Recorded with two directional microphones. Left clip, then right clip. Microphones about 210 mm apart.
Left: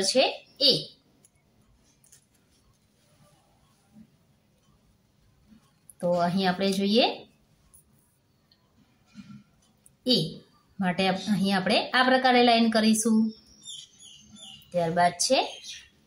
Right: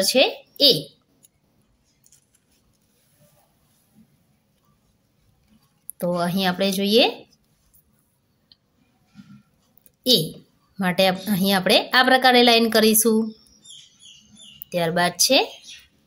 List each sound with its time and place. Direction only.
0.0 s speech: 40° right (ahead or behind)
5.9 s speech: 40° right (ahead or behind)
10.8 s a woman's voice: 45° right (ahead or behind)
14.7 s a woman's voice: 45° right (ahead or behind)